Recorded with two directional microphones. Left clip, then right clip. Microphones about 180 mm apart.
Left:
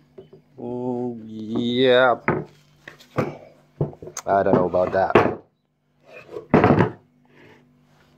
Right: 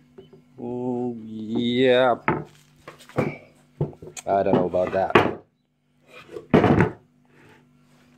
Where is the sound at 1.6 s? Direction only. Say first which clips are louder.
Left 2 dB; 15° right (ahead or behind).